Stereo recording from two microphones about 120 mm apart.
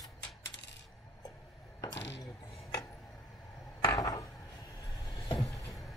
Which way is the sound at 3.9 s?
30° left (ahead or behind).